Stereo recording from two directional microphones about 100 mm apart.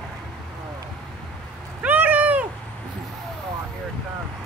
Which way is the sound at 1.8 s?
15° right (ahead or behind).